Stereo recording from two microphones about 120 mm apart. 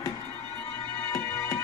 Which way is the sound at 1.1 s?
25° left (ahead or behind).